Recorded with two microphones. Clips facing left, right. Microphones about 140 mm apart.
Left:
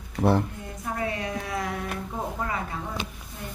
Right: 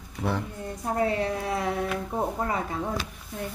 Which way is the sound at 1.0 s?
35° right (ahead or behind).